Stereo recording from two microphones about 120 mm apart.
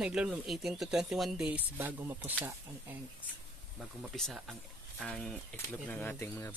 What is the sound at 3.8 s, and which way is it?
Speech, centre (ahead or behind).